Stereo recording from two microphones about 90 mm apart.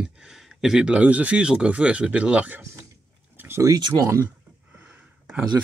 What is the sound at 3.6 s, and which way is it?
Speech, 40° right (ahead or behind).